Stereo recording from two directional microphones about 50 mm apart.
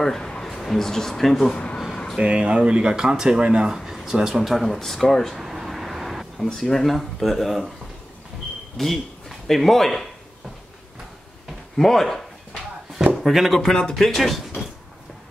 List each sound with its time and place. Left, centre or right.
0.0 s speech: centre
1.4 s speech: left
2.1 s speech: right
3.7 s speech: centre
5.4 s a sound: centre
8.7 s speech: centre
11.7 s speech: centre
13.6 s speech: centre